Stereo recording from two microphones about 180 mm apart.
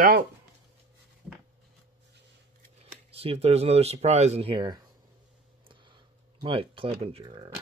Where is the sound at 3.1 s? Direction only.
35° right (ahead or behind).